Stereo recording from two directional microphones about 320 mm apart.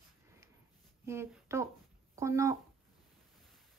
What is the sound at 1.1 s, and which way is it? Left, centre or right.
Speech, centre.